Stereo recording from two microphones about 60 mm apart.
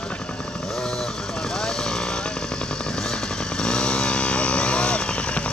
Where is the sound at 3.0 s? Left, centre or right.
Centre.